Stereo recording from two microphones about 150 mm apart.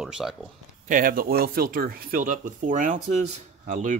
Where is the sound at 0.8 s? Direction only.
65° right (ahead or behind).